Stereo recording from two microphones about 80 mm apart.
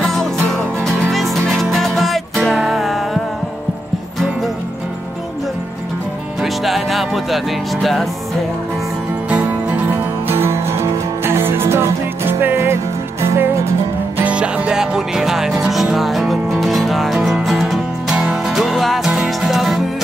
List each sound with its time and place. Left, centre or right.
0.0 s music: centre
6.4 s music: centre
9.3 s music: centre; by 13.7 s right
14.1 s music: centre